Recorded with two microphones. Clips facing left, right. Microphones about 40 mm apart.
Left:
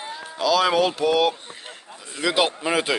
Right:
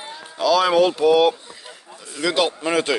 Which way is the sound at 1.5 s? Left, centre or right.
Left.